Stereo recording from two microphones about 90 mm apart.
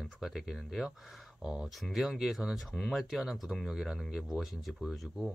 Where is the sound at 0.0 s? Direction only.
5° right (ahead or behind).